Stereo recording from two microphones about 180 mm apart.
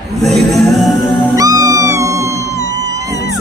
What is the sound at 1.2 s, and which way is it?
Music, 20° right (ahead or behind).